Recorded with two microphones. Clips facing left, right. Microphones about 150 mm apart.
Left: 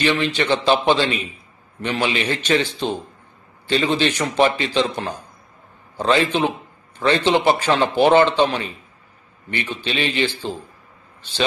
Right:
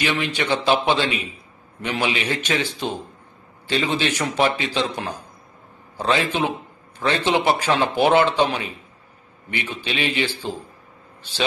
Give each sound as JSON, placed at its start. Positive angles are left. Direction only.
{"t": 0.0, "sound": "a man's voice", "side_deg": -10}